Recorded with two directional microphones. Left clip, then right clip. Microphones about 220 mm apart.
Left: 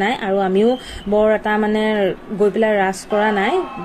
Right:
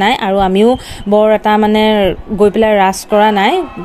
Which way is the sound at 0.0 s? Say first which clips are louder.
Right 7 dB; 45° right (ahead or behind).